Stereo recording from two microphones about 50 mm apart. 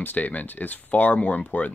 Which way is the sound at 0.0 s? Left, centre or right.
Left.